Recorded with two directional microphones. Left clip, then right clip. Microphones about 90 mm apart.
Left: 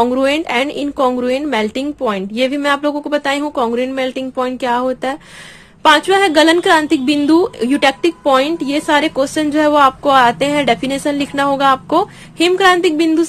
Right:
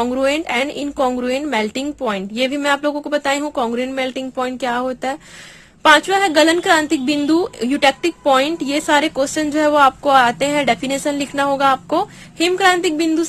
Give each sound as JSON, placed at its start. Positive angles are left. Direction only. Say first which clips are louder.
{"t": 0.0, "sound": "a woman's voice", "louder": "left 4 dB", "side_deg": -20}
{"t": 5.8, "sound": "a woman's voice", "louder": "left 2 dB", "side_deg": -10}